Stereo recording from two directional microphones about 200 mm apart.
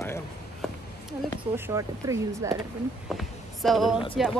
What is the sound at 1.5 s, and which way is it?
Speech, 15° right (ahead or behind).